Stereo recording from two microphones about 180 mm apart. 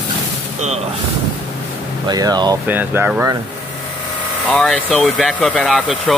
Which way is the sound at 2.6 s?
10° right (ahead or behind).